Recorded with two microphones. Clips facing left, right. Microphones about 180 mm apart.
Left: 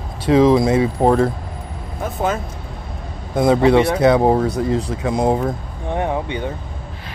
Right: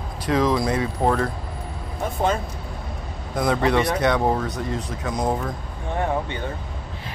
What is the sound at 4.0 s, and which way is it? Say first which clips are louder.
Speech: left 7 dB; 30° left (ahead or behind).